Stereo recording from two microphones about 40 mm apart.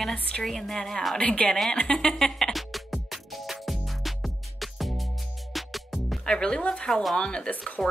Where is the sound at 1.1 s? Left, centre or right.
Left; by 2.5 s centre.